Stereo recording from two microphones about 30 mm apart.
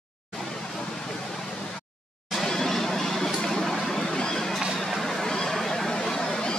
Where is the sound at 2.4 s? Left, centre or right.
Centre.